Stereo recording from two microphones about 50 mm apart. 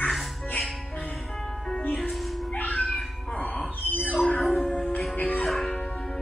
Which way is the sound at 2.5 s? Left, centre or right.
Left.